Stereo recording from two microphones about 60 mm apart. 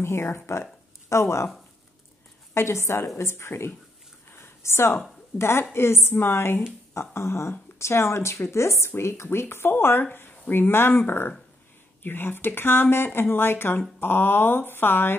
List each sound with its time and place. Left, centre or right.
0.0 s speech: left
2.5 s a woman's voice: left
4.3 s a sound: left
5.4 s a woman's voice: left